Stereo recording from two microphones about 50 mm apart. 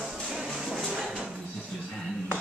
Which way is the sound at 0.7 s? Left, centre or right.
Centre.